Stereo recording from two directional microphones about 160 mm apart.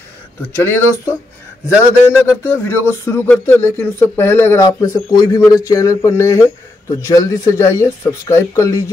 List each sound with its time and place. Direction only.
0.7 s speech: 15° left (ahead or behind)
2.1 s speech: 15° left (ahead or behind)